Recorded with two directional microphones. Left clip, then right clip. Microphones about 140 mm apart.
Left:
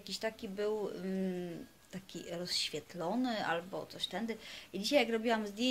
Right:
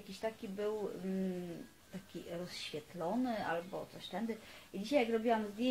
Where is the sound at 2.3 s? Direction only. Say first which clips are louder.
Left 7 dB; 20° left (ahead or behind).